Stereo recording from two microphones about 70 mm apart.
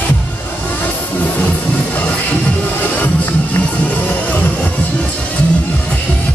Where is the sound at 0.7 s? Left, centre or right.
Left.